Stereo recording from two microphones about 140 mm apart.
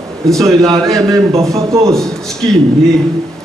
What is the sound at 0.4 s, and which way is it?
Speech, 20° right (ahead or behind).